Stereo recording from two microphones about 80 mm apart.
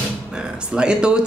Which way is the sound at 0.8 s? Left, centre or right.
Centre.